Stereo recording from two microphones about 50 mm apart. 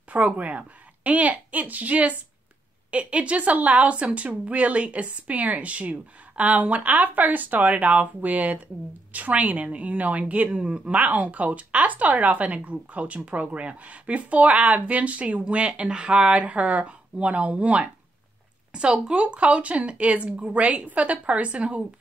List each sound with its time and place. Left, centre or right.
0.1 s a woman's voice: right
18.7 s speech: centre